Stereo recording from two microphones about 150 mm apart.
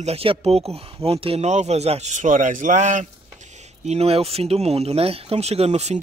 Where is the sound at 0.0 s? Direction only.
40° right (ahead or behind).